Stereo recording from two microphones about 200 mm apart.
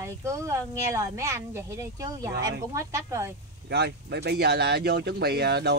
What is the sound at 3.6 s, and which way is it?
Speech, 55° right (ahead or behind).